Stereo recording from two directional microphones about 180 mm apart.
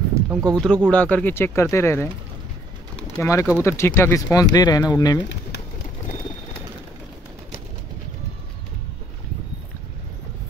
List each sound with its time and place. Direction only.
0.1 s a sound: 20° right (ahead or behind)
0.8 s speech: 5° left (ahead or behind)
3.2 s speech: 15° left (ahead or behind)